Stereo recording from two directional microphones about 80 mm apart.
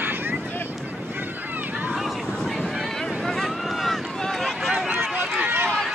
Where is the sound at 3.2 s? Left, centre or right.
Centre.